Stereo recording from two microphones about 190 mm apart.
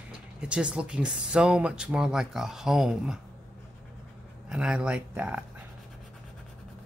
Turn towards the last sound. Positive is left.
turn(degrees=-5)  # may be behind; listen again after turning